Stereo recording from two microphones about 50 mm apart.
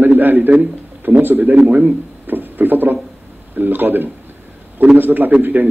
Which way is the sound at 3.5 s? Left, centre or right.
Right.